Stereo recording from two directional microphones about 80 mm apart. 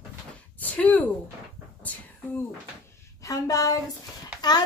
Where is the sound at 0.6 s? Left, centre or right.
Centre.